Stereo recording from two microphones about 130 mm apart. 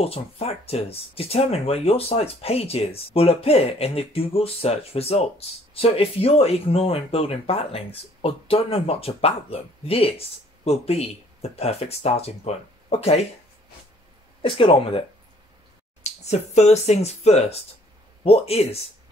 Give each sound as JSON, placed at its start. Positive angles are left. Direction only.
{"t": 0.0, "sound": "speech", "side_deg": 50}
{"t": 14.4, "sound": "speech", "side_deg": 45}
{"t": 16.0, "sound": "speech", "side_deg": 60}